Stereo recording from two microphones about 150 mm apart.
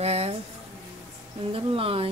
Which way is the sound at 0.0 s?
45° right (ahead or behind).